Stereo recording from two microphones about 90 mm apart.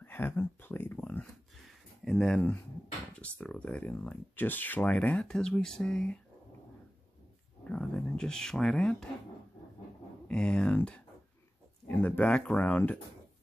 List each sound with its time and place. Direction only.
0.0 s speech: 25° left (ahead or behind)
2.0 s speech: 5° left (ahead or behind)
7.6 s speech: 15° left (ahead or behind)
10.2 s speech: 10° left (ahead or behind)